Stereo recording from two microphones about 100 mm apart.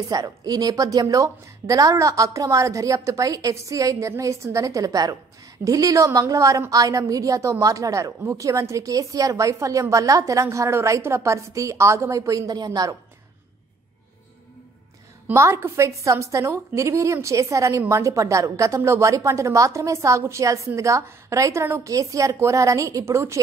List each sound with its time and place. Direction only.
0.1 s a woman's voice: 40° right (ahead or behind)
15.2 s a woman's voice: 25° right (ahead or behind)